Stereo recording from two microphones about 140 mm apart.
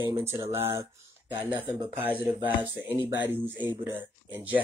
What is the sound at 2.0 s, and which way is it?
Speech, 15° right (ahead or behind).